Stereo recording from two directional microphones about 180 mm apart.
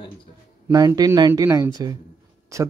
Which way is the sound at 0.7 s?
20° right (ahead or behind).